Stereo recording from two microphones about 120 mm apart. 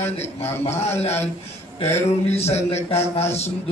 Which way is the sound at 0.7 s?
65° left (ahead or behind).